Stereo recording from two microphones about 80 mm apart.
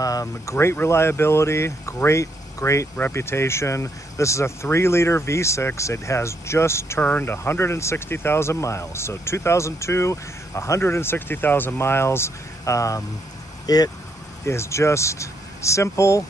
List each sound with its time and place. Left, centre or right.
0.0 s speech: left
7.0 s speech: left
13.7 s speech: left
14.4 s speech: left